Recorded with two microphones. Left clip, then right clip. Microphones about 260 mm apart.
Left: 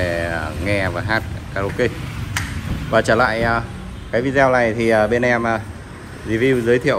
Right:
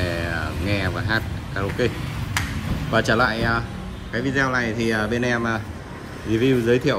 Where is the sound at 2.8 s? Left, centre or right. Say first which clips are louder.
Left 5 dB; centre.